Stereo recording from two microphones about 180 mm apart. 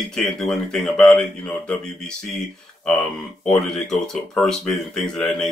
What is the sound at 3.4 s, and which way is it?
A man's voice, 5° left (ahead or behind).